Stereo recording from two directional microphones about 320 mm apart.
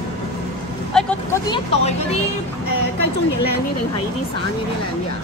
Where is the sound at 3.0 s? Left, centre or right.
Left.